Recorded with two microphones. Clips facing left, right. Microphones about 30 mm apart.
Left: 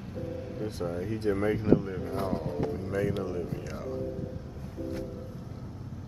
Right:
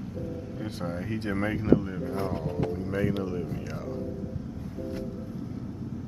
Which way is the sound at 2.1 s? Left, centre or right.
Right.